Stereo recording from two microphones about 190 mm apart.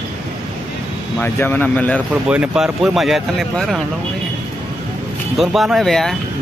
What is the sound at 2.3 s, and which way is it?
Speech, 5° right (ahead or behind).